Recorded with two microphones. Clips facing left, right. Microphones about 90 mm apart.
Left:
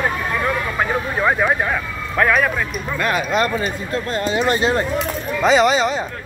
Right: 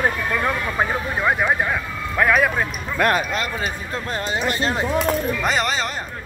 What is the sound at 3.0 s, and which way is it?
Speech, 65° right (ahead or behind).